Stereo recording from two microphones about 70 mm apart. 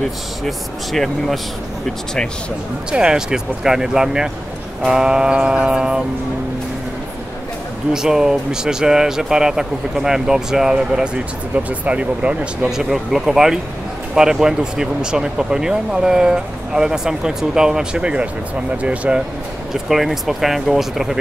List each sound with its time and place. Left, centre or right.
0.5 s speech: centre
2.9 s speech: centre
7.9 s speech: centre
12.6 s speech: centre
19.7 s speech: centre